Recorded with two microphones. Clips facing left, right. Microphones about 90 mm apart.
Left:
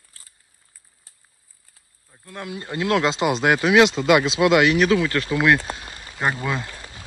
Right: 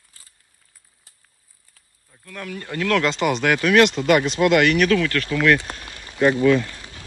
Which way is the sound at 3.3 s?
35° left (ahead or behind).